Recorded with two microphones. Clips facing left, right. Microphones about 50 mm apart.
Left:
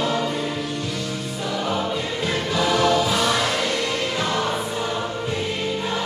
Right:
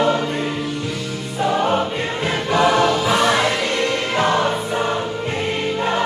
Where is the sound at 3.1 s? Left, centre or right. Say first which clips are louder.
Right 4 dB; right.